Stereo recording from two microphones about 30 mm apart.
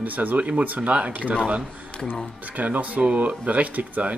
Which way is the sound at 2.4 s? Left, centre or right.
Right.